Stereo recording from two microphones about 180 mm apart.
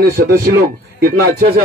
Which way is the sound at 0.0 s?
60° right (ahead or behind).